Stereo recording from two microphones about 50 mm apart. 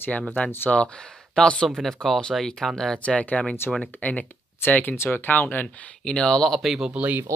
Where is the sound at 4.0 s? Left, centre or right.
Left.